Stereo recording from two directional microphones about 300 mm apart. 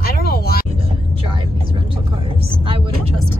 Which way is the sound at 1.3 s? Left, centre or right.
Centre.